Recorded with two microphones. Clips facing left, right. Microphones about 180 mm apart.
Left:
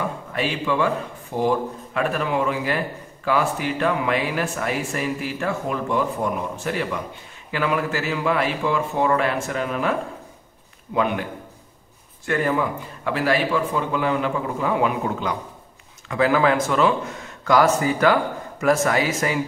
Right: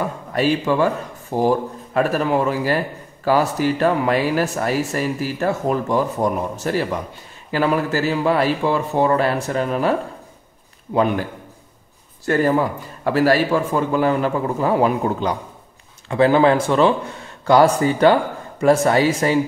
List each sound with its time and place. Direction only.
0.3 s speech: 40° right (ahead or behind)
12.3 s speech: 35° right (ahead or behind)